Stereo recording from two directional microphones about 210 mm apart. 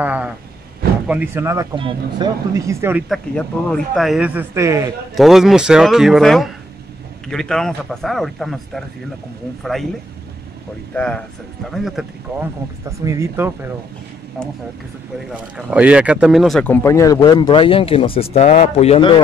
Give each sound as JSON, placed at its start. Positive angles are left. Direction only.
{"t": 0.0, "sound": "a sound", "side_deg": -5}
{"t": 1.0, "sound": "speech", "side_deg": -5}
{"t": 3.3, "sound": "a man's voice", "side_deg": 5}
{"t": 5.1, "sound": "a man's voice", "side_deg": 0}
{"t": 11.0, "sound": "a man's voice", "side_deg": 5}
{"t": 12.8, "sound": "speech", "side_deg": -15}
{"t": 15.5, "sound": "speech", "side_deg": -5}